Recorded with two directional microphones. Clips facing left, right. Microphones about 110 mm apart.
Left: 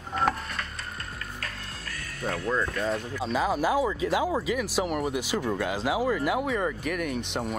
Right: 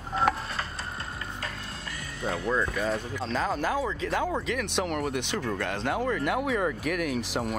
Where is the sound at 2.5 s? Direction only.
5° right (ahead or behind).